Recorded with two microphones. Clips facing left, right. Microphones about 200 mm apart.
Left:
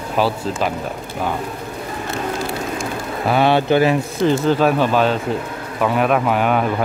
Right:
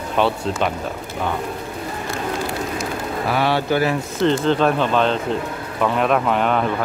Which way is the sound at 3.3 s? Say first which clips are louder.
Left 5 dB; 20° left (ahead or behind).